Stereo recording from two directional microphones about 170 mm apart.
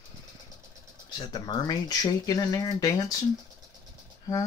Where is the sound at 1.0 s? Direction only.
25° left (ahead or behind).